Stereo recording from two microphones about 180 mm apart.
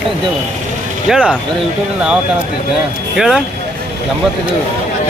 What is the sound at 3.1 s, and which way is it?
Speech, 5° right (ahead or behind).